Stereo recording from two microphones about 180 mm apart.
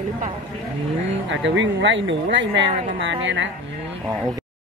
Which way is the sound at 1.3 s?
90° right.